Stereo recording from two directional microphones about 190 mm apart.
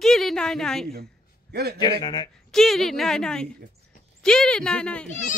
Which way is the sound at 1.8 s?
20° left (ahead or behind).